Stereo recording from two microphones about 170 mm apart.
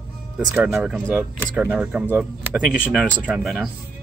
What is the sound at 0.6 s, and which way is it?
Speech, 15° right (ahead or behind).